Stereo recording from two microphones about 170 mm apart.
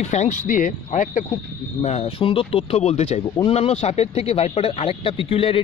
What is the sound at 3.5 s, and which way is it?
Speech, 40° left (ahead or behind).